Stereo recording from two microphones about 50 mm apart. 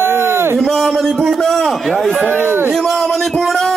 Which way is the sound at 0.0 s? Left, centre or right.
Right.